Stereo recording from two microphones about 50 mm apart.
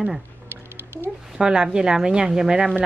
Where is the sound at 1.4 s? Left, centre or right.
Centre.